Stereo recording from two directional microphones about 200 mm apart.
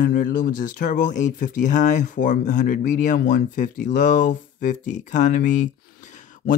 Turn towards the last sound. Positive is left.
turn(degrees=40)  # may be behind; listen again after turning